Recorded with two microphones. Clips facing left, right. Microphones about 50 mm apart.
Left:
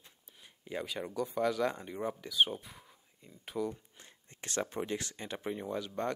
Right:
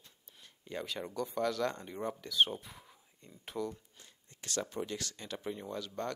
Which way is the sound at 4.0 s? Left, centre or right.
Left.